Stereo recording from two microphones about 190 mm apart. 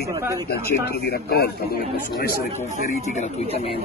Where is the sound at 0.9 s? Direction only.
55° left (ahead or behind).